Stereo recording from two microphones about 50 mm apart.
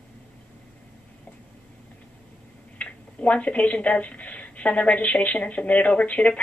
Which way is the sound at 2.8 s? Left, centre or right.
Left.